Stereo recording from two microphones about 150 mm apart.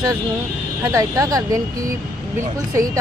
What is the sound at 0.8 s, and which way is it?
Speech, 20° right (ahead or behind).